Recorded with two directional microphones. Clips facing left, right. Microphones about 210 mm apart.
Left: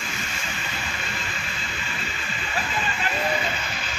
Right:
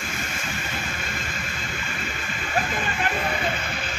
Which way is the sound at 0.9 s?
45° right (ahead or behind).